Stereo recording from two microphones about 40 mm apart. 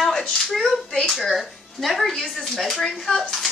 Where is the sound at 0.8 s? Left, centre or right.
Centre.